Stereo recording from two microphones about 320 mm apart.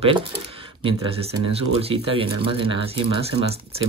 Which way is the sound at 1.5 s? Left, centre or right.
Centre.